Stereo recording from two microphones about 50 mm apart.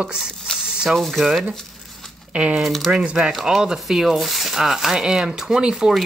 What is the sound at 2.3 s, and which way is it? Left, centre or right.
Speech, centre.